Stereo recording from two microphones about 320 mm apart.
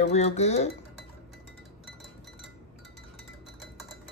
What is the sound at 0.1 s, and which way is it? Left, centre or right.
Speech, left.